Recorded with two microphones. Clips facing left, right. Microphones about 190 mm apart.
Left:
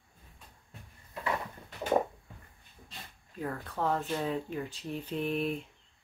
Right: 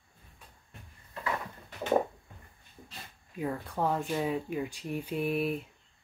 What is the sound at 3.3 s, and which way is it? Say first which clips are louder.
Speech: right 3 dB; 15° right (ahead or behind).